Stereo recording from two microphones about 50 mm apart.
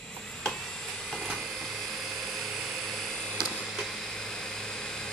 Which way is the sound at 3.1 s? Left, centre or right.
Centre.